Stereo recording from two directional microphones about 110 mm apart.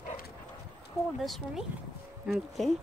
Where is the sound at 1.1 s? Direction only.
Centre (ahead or behind).